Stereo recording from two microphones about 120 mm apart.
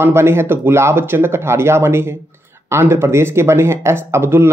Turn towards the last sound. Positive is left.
turn(degrees=-20)  # may be behind; listen again after turning